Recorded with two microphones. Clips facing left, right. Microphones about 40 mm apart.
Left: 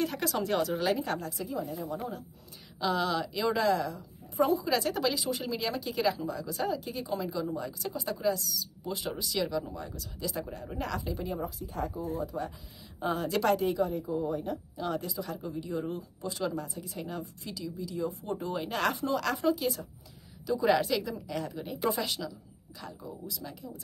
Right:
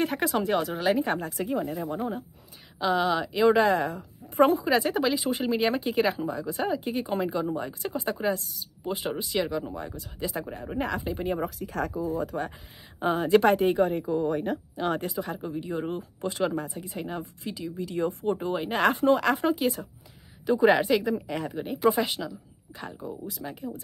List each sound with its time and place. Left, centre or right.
0.0 s speech: right
0.4 s speech: centre
1.0 s speech: right
1.3 s speech: right
2.0 s speech: right
2.8 s speech: centre; by 4.6 s right
4.6 s speech: right
11.3 s speech: right
12.3 s speech: right
13.0 s speech: right
13.7 s speech: right
14.0 s speech: right
17.7 s speech: right
18.9 s speech: right